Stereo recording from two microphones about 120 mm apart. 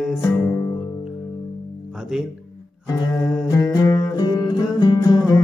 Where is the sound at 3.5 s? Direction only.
25° left (ahead or behind).